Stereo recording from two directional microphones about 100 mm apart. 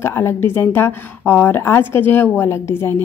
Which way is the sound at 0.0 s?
25° left (ahead or behind).